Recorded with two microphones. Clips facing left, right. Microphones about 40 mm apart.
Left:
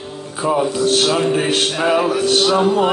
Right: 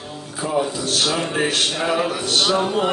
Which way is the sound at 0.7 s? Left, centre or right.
Left.